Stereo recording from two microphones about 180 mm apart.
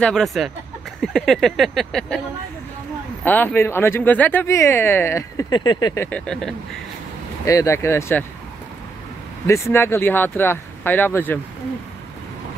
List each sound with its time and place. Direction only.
0.0 s speech: 5° left (ahead or behind)
3.3 s speech: 10° left (ahead or behind)
6.0 s speech: 5° left (ahead or behind)
7.4 s speech: 15° left (ahead or behind)
9.5 s speech: 15° left (ahead or behind)